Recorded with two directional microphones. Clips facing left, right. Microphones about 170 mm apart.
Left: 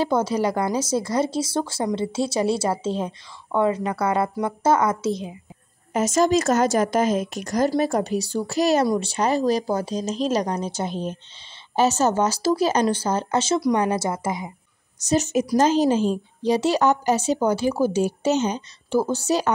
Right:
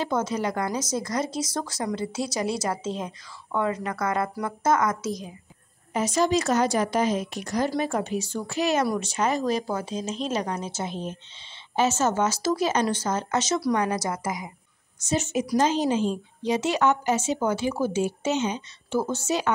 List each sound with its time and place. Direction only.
0.0 s speech: 30° left (ahead or behind)
5.9 s a woman's voice: 45° left (ahead or behind); by 14.5 s 25° left (ahead or behind)
15.0 s a woman's voice: 40° left (ahead or behind)